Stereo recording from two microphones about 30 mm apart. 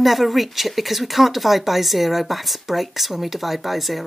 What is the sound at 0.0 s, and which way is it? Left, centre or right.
Speech, centre.